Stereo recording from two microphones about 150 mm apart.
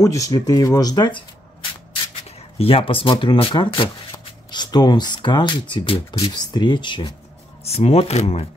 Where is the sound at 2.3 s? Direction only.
40° left (ahead or behind).